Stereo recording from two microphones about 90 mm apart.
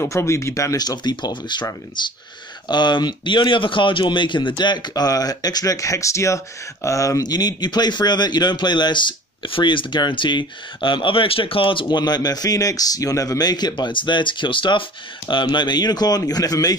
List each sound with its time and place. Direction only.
0.0 s speech: 30° left (ahead or behind)
0.7 s speech: 50° left (ahead or behind)